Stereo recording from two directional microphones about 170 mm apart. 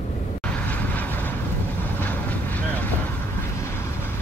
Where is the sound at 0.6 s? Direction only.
10° left (ahead or behind).